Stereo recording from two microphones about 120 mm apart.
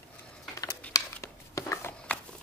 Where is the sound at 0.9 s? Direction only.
25° left (ahead or behind).